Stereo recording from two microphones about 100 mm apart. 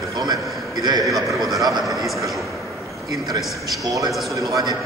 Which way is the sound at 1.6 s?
35° right (ahead or behind).